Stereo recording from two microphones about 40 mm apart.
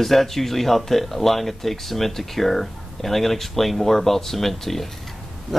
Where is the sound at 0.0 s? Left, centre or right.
Centre.